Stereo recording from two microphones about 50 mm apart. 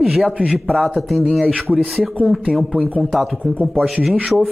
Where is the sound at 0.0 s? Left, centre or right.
Centre.